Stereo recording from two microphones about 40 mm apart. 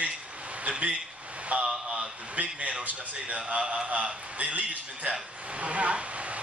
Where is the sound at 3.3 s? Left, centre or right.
Right.